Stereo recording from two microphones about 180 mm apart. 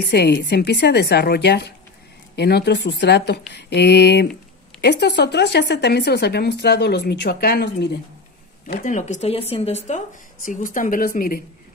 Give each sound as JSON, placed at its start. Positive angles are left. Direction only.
{"t": 0.0, "sound": "a woman's voice", "side_deg": 65}
{"t": 8.7, "sound": "speech", "side_deg": 40}